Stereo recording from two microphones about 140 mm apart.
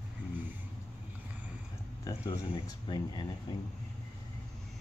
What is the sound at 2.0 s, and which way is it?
Speech, 25° left (ahead or behind).